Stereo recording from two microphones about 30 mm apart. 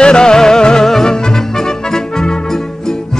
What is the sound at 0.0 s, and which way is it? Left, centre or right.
Music, left.